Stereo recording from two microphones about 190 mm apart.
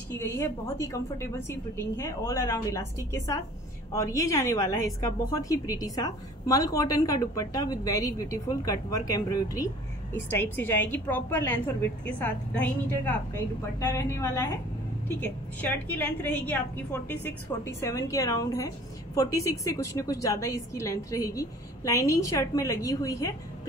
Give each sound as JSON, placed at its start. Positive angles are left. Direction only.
{"t": 0.1, "sound": "a woman's voice", "side_deg": 15}